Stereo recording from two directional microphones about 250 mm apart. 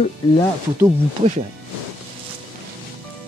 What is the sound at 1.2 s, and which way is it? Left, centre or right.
Speech, right.